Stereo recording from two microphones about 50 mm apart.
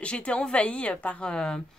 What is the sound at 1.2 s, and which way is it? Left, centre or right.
Speech, centre.